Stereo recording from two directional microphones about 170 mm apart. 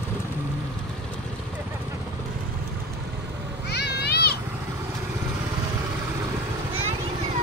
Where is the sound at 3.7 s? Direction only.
70° left (ahead or behind).